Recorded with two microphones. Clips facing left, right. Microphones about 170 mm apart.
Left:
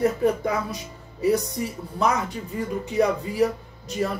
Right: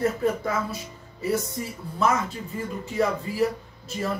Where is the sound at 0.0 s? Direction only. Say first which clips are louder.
Left 3 dB; 15° left (ahead or behind).